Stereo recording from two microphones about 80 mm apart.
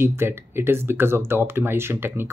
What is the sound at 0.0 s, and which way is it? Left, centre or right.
Speech, right.